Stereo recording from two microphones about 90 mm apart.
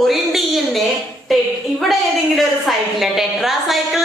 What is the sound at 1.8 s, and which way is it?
A woman's voice, centre (ahead or behind).